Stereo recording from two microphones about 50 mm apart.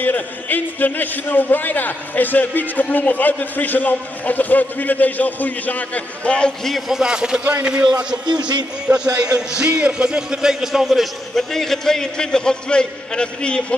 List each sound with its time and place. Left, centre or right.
0.0 s a man's voice: left
6.2 s a man's voice: left
6.9 s a man's voice: centre
11.3 s a man's voice: centre